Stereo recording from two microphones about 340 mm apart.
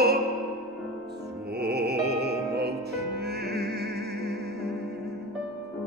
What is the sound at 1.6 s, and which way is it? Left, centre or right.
Music, right.